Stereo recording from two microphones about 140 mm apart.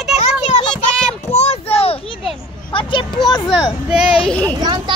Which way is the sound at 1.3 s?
50° left (ahead or behind).